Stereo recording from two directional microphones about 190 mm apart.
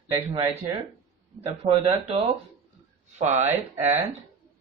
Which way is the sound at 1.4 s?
35° right (ahead or behind).